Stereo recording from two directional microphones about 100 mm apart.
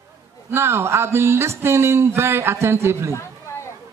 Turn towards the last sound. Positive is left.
turn(degrees=-30)  # may be behind; listen again after turning